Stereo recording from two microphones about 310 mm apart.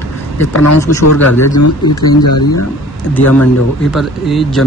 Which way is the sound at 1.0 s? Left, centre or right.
Left.